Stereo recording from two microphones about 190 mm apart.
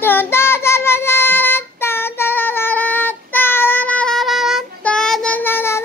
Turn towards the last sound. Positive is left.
turn(degrees=10)  # may be behind; listen again after turning